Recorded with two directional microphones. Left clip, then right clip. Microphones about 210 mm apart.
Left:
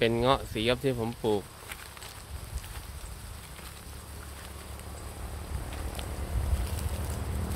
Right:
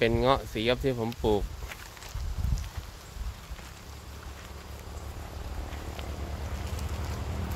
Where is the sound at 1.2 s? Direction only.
20° right (ahead or behind).